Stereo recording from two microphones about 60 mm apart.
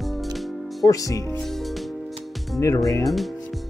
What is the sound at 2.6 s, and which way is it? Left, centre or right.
Speech, left.